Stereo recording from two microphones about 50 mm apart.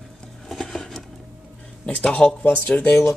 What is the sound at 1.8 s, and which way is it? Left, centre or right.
Speech, left.